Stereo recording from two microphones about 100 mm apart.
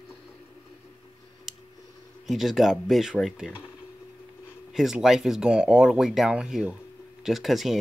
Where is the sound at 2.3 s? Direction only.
Centre (ahead or behind).